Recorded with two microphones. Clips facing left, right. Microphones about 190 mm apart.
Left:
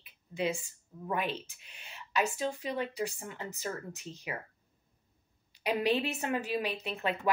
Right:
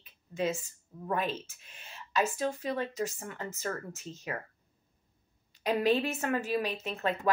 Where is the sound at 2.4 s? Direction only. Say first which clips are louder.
Right 2 dB; 15° left (ahead or behind).